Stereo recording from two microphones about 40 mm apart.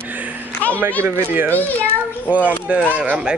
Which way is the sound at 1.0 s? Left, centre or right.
Right.